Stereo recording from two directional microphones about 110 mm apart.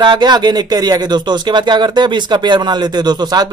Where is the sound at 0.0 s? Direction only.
40° right (ahead or behind).